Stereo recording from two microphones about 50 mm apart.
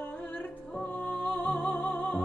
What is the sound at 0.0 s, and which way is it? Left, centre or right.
Music, left.